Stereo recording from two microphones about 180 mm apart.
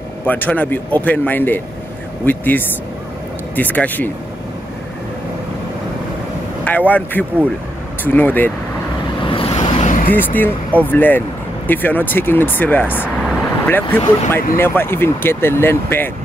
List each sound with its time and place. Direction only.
0.2 s speech: 10° left (ahead or behind)
6.6 s speech: 10° left (ahead or behind)
9.2 s vehicle: 30° left (ahead or behind)
10.0 s speech: 10° left (ahead or behind)